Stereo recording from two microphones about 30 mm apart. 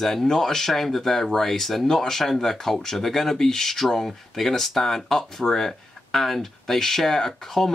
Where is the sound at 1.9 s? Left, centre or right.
Centre.